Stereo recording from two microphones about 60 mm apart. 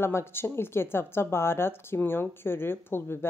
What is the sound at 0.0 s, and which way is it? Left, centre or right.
A woman's voice, left.